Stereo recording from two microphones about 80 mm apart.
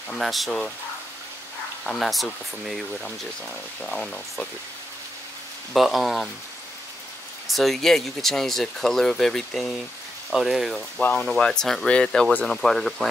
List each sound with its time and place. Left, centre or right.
0.1 s speech: centre
1.9 s speech: centre
5.7 s speech: centre
7.4 s speech: centre
11.0 s speech: centre